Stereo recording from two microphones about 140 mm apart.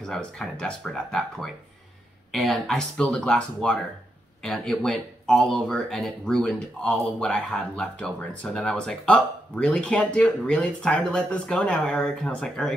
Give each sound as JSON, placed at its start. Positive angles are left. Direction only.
{"t": 0.0, "sound": "speech", "side_deg": 5}